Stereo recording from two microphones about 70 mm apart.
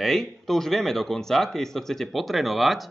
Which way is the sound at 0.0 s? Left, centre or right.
Centre.